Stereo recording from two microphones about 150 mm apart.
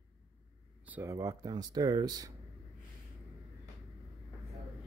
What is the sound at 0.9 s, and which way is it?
Speech, 20° right (ahead or behind).